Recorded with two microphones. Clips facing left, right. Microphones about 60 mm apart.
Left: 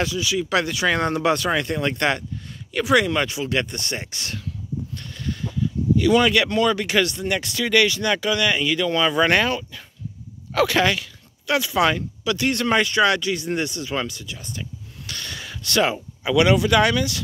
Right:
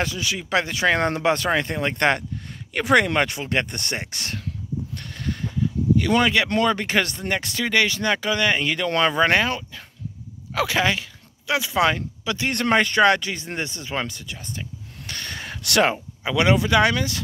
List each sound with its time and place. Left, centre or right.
0.0 s speech: right
0.5 s speech: right
4.9 s a sound: right
5.9 s speech: right
6.2 s speech: right
6.5 s speech: right
9.1 s speech: right
10.5 s speech: centre
12.4 s speech: right
15.0 s gasp: right
15.6 s speech: right
16.3 s speech: right